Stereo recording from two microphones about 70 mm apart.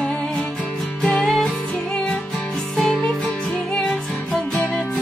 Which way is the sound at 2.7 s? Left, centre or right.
Centre.